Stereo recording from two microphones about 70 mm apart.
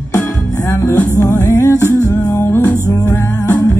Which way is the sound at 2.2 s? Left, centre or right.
Left.